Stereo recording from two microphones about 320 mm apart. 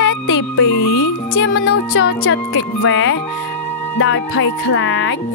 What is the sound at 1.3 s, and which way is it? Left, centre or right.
Speech, left.